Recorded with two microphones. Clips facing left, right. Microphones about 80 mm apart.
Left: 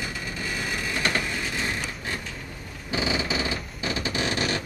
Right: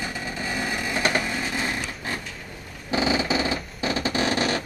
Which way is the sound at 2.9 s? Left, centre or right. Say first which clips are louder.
Right 4 dB; right.